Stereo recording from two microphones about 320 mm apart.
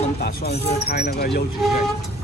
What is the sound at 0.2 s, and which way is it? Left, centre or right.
Speech, left.